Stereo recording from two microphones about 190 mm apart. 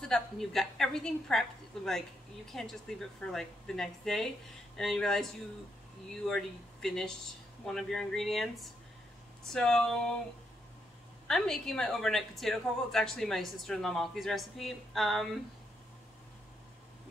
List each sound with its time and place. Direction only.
0.0 s a woman's voice: centre (ahead or behind)
9.5 s a woman's voice: 5° left (ahead or behind)
11.2 s a woman's voice: centre (ahead or behind)